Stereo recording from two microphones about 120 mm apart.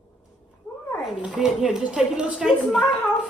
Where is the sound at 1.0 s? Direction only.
5° right (ahead or behind).